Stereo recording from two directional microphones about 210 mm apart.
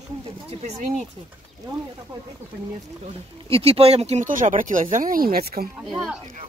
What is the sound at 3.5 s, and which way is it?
Speech, 30° right (ahead or behind).